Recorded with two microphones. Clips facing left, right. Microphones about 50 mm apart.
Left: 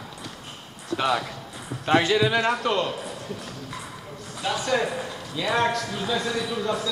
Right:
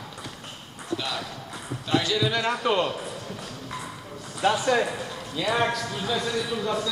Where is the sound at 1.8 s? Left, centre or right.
Left.